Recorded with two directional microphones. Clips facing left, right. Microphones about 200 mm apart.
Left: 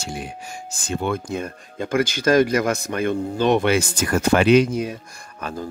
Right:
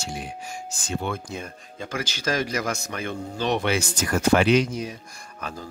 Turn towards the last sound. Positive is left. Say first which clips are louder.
# left 5 dB
turn(degrees=55)  # may be behind; listen again after turning